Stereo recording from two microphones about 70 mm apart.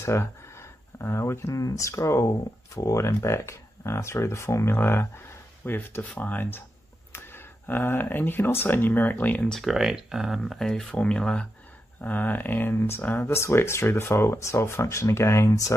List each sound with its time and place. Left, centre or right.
0.0 s a sound: left
1.5 s speech: left
9.5 s speech: centre
12.0 s speech: left